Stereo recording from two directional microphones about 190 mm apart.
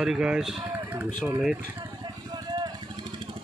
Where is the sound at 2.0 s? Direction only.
25° right (ahead or behind).